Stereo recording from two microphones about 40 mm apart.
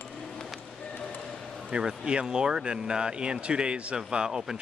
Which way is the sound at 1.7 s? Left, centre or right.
Right.